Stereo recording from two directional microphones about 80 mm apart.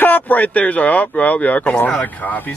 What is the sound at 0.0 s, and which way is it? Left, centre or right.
Speech, left.